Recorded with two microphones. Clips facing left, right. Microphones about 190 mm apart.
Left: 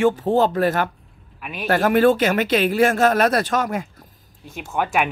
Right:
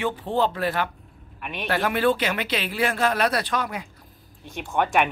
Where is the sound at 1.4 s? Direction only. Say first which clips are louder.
Left 2 dB; centre (ahead or behind).